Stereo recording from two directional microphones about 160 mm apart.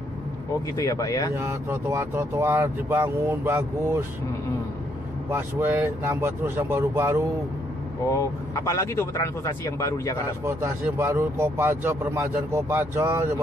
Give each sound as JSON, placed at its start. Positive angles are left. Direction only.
{"t": 0.7, "sound": "speech", "side_deg": 20}
{"t": 1.3, "sound": "speech", "side_deg": -15}
{"t": 5.3, "sound": "speech", "side_deg": -15}
{"t": 8.1, "sound": "speech", "side_deg": 20}
{"t": 11.0, "sound": "speech", "side_deg": -15}